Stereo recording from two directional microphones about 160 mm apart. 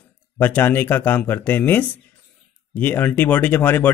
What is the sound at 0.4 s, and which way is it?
Speech, 10° left (ahead or behind).